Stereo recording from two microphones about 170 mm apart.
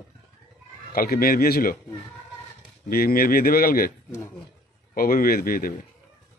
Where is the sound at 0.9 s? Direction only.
60° left (ahead or behind).